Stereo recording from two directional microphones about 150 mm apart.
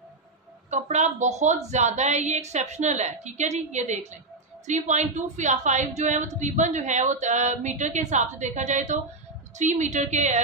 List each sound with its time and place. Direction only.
0.7 s a woman's voice: 50° right (ahead or behind)